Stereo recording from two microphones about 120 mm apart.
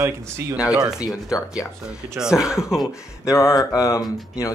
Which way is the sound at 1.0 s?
30° left (ahead or behind).